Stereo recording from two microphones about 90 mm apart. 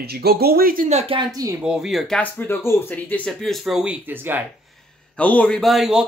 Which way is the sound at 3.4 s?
Centre (ahead or behind).